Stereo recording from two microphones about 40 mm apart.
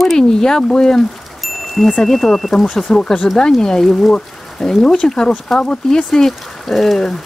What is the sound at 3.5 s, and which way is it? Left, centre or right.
Speech, centre.